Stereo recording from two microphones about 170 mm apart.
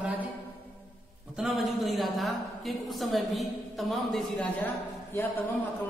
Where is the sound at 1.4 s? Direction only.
Centre (ahead or behind).